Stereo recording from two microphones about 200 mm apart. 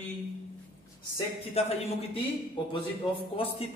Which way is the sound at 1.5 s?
30° left (ahead or behind).